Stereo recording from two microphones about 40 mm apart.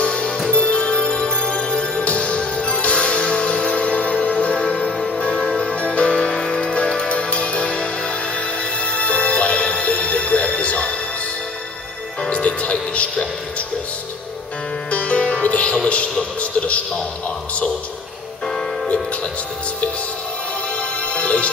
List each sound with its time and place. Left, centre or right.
0.0 s music: left
6.3 s music: centre
12.3 s music: left
12.9 s a sound: left
14.9 s music: left
21.1 s music: left